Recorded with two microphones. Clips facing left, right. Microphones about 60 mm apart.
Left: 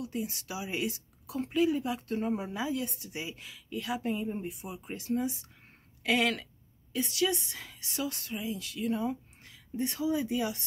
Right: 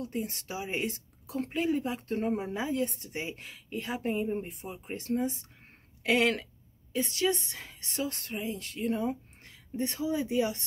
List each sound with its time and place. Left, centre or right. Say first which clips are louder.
0.0 s a woman's voice: right 1 dB; right
6.0 s a woman's voice: right 2 dB; right